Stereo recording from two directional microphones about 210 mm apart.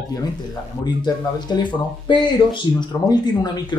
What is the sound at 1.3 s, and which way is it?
Speech, 20° left (ahead or behind).